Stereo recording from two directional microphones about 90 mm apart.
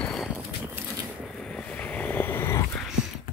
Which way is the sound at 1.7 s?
15° left (ahead or behind).